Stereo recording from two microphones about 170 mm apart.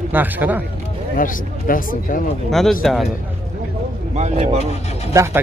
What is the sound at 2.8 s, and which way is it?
Speech, centre (ahead or behind).